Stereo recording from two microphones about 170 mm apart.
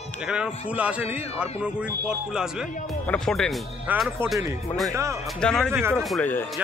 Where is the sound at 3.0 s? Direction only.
5° left (ahead or behind).